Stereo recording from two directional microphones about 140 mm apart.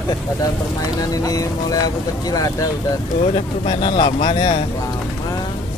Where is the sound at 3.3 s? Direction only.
40° left (ahead or behind).